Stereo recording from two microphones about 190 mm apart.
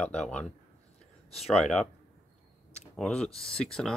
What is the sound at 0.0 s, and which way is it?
Speech, 5° left (ahead or behind).